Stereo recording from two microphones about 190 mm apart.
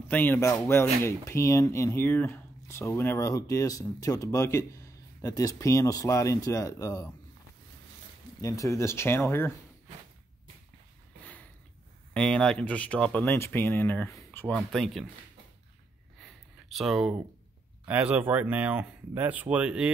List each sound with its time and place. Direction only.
0.1 s speech: 10° left (ahead or behind)
8.4 s speech: 15° left (ahead or behind)
12.1 s speech: 5° left (ahead or behind)
16.2 s a sound: centre (ahead or behind)
17.8 s speech: 5° right (ahead or behind)